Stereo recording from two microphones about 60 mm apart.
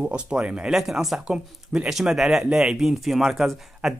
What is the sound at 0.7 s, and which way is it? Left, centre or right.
Speech, centre.